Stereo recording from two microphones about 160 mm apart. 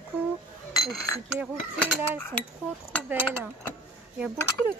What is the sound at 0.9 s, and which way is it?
Speech, 20° left (ahead or behind).